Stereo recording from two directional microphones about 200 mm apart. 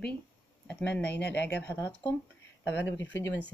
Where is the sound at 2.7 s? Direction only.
65° left (ahead or behind).